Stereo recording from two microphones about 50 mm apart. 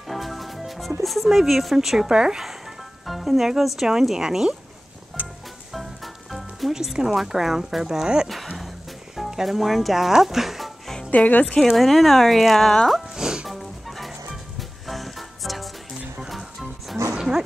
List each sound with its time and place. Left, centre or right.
0.1 s music: centre
1.0 s speech: centre
5.2 s music: right
6.7 s speech: centre
11.1 s speech: left
11.7 s speech: centre
13.1 s music: centre
13.5 s music: centre
17.1 s a sound: centre